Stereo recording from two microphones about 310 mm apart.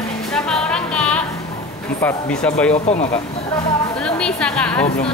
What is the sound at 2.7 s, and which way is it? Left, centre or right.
Speech, left.